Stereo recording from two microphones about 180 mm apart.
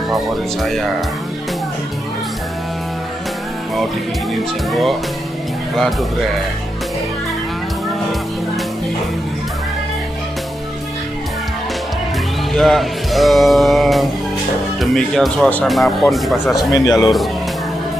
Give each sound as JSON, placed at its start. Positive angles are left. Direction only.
{"t": 0.6, "sound": "speech", "side_deg": 0}
{"t": 5.8, "sound": "speech", "side_deg": 0}
{"t": 12.5, "sound": "speech", "side_deg": 0}
{"t": 16.7, "sound": "speech", "side_deg": 20}